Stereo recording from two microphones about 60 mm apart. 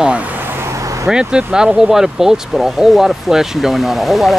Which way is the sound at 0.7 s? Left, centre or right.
Right.